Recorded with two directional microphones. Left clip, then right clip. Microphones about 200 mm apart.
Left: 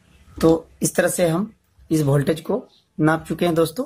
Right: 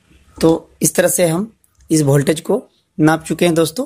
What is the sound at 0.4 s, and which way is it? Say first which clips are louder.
Speech: right 3 dB; 30° right (ahead or behind).